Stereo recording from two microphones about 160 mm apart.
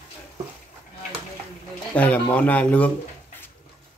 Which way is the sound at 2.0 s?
10° left (ahead or behind).